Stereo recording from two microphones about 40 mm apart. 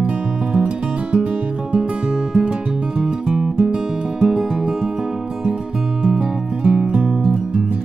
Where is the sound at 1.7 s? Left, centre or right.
Centre.